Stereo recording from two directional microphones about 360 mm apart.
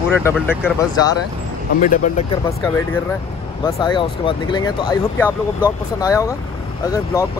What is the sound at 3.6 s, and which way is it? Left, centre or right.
Speech, centre.